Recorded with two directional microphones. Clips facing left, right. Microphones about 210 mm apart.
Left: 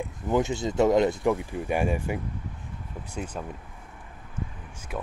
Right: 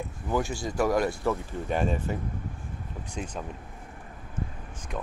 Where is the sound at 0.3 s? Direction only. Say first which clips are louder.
Left 4 dB; 20° left (ahead or behind).